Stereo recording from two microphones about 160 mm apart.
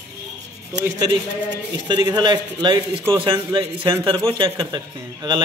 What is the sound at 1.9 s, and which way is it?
A man's voice, 25° right (ahead or behind).